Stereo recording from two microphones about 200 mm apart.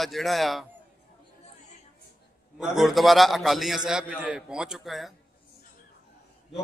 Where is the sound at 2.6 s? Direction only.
Centre (ahead or behind).